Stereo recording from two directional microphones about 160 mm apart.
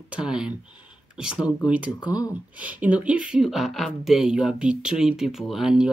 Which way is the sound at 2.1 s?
10° right (ahead or behind).